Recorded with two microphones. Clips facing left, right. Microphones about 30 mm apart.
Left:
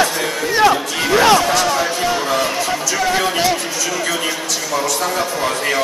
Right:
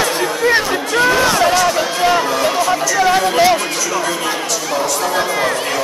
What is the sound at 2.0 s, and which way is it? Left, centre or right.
Speech, right.